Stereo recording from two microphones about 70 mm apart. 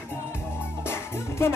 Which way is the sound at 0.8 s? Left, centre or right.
Left.